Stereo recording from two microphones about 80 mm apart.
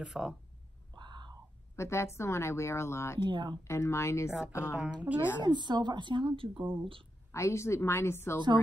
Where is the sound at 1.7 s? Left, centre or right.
Left.